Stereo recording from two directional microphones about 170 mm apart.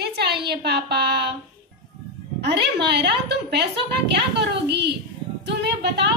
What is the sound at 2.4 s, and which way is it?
A woman's voice, 80° right.